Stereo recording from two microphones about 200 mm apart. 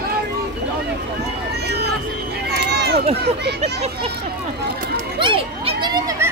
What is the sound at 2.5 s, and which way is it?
Run, 55° right (ahead or behind).